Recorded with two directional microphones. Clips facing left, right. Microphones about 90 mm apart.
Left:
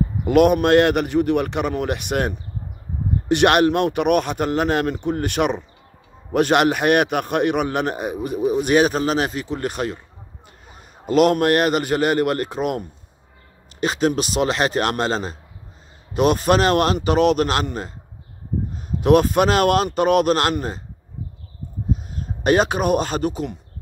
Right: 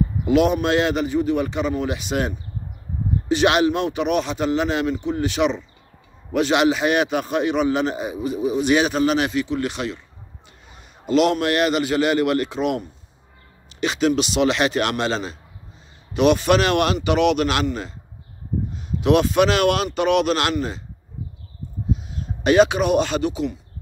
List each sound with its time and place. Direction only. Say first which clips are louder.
0.2 s a man's voice: left 3 dB; 55° left (ahead or behind)
22.1 s speech: right 2 dB; 45° left (ahead or behind)